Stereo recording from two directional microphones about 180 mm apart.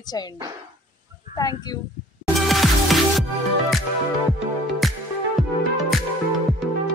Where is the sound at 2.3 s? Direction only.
Centre (ahead or behind).